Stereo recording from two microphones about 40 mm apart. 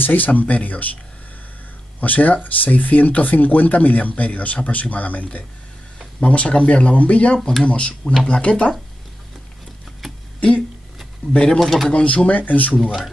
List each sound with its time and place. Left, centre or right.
0.0 s speech: left
2.0 s speech: left
10.0 s a sound: centre
11.3 s speech: left
11.6 s speech: centre
11.9 s speech: left